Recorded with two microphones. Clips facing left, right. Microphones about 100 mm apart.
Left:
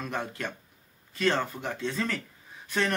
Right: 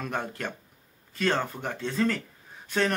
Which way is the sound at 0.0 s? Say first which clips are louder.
Right 1 dB; 45° right (ahead or behind).